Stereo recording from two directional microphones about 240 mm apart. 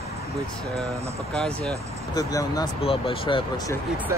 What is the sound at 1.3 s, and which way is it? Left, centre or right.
Speech, centre.